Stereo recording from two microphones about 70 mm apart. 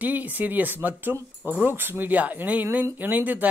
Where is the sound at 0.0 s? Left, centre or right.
Right.